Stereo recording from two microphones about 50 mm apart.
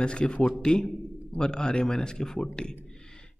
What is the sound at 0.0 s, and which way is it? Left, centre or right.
A man's voice, centre.